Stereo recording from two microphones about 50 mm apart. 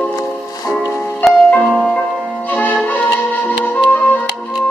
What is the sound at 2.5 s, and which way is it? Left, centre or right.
Music, left.